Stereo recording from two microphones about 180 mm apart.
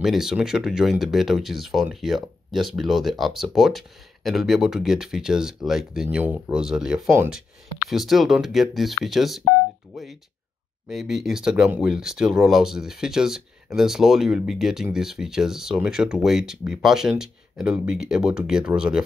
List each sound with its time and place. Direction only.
0.0 s speech: centre (ahead or behind)
10.9 s speech: centre (ahead or behind)